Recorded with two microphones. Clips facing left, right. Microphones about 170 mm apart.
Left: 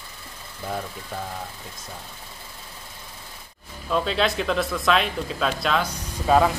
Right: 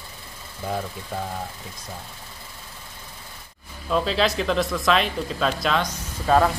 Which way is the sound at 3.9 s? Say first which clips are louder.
Right 1 dB; centre (ahead or behind).